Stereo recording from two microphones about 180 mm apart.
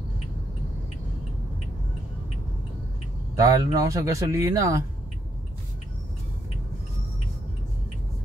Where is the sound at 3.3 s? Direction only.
20° right (ahead or behind).